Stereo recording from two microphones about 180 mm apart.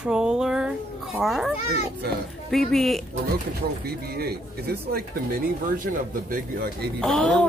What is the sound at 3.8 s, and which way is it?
Speech, 60° right (ahead or behind).